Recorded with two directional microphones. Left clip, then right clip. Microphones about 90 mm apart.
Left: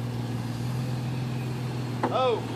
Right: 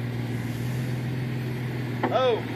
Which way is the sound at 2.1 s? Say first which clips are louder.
Right 2 dB; 30° left (ahead or behind).